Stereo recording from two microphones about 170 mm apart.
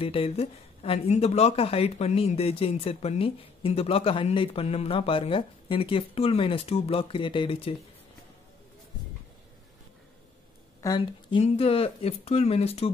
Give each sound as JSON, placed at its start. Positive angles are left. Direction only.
{"t": 0.0, "sound": "a woman's voice", "side_deg": 35}
{"t": 10.8, "sound": "a woman's voice", "side_deg": 25}